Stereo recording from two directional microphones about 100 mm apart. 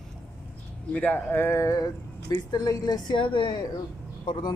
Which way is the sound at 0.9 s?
15° left (ahead or behind).